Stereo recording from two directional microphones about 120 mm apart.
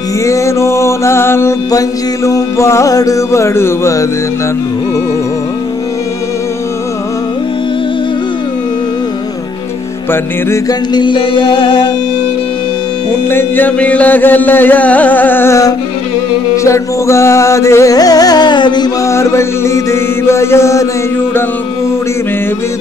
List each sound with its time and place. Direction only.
0.2 s music: 25° left (ahead or behind)
10.5 s music: 35° left (ahead or behind)
13.3 s music: 15° left (ahead or behind); by 18.9 s 40° left (ahead or behind)
19.0 s music: 25° left (ahead or behind)